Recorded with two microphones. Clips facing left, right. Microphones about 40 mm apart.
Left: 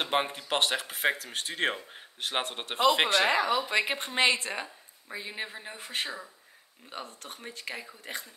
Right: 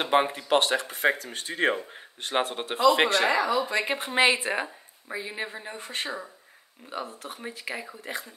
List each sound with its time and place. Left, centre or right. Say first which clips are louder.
0.0 s speech: right 5 dB; centre
3.3 s speech: right 2 dB; left
3.8 s speech: right 4 dB; centre
5.1 s speech: right 4 dB; centre